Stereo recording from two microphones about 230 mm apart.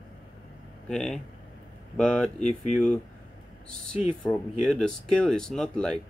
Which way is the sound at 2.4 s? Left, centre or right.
Left.